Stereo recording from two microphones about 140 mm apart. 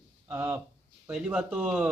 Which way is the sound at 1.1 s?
5° right (ahead or behind).